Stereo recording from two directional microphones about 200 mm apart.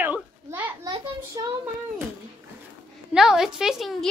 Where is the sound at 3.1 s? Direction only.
Centre (ahead or behind).